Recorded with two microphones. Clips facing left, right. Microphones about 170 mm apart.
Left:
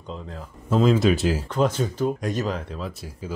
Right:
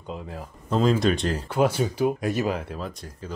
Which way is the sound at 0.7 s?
Centre (ahead or behind).